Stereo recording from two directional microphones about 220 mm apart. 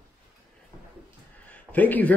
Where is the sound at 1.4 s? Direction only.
5° left (ahead or behind).